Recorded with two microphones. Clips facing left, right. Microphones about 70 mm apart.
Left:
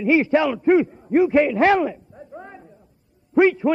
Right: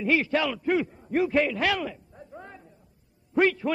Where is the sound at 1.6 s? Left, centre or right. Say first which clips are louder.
Left 10 dB; left.